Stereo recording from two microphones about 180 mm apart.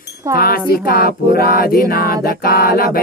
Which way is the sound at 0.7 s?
55° left (ahead or behind).